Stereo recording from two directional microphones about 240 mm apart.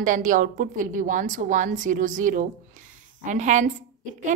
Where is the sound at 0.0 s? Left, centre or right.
Right.